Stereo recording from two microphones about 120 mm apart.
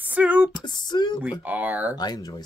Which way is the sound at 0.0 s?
10° right (ahead or behind).